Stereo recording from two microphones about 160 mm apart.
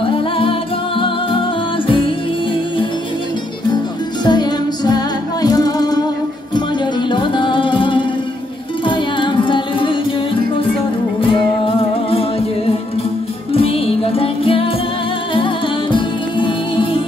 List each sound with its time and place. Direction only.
0.0 s music: 35° left (ahead or behind)
3.7 s music: 25° left (ahead or behind)
7.1 s music: 30° left (ahead or behind)